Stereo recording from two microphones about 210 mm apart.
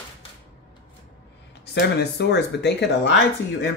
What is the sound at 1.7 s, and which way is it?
Speech, 55° left (ahead or behind).